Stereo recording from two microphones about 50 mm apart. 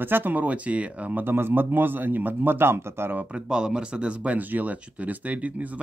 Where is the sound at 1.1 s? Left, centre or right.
Right.